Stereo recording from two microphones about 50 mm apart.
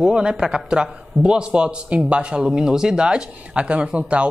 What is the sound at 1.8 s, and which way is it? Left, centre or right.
Speech, right.